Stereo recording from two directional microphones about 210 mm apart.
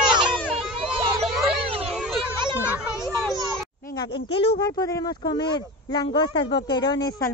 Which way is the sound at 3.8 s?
20° left (ahead or behind).